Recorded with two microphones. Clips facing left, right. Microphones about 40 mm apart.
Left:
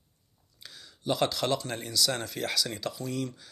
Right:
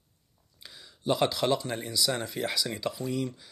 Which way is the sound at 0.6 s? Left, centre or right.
Centre.